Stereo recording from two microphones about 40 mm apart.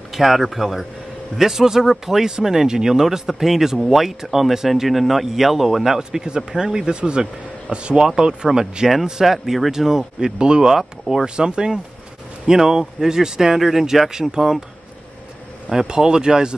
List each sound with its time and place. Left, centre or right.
0.1 s speech: centre
5.9 s speech: centre
10.4 s speech: right
10.7 s speech: centre
11.2 s speech: right
15.7 s speech: centre